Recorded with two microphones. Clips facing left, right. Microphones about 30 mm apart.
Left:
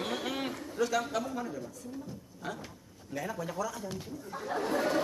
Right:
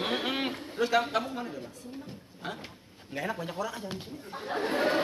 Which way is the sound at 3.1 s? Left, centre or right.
Right.